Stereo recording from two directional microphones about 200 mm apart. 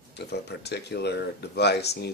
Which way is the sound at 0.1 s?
55° left (ahead or behind).